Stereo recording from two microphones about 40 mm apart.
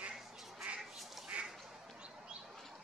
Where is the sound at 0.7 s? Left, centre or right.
Right.